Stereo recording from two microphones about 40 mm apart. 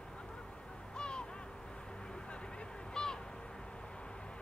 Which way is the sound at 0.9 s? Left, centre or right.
Left.